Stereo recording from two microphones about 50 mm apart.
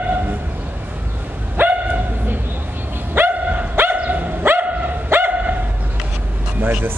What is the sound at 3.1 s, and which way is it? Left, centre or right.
Dog, right.